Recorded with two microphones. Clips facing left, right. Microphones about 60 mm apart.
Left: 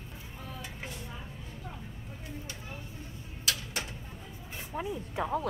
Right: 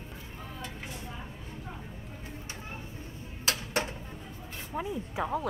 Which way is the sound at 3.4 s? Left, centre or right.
Right.